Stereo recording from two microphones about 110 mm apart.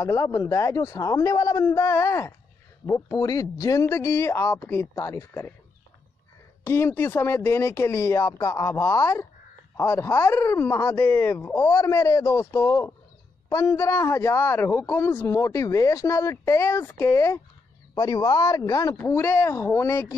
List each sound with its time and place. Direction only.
0.0 s a man's voice: 25° left (ahead or behind)
6.6 s a man's voice: 20° left (ahead or behind)
17.9 s a man's voice: 35° left (ahead or behind)